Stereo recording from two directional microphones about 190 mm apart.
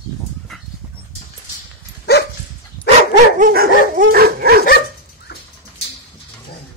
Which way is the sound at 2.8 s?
10° left (ahead or behind).